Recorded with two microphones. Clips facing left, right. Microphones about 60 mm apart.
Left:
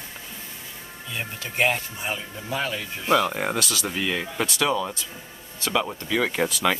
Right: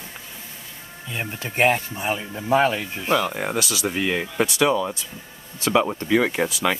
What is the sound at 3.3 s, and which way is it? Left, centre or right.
Speech, centre.